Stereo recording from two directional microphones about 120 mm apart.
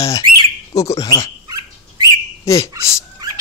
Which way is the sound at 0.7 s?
30° left (ahead or behind).